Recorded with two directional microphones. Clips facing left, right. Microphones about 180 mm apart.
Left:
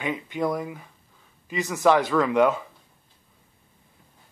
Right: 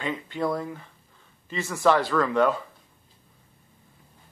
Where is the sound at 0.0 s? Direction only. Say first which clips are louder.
Left 1 dB; 15° left (ahead or behind).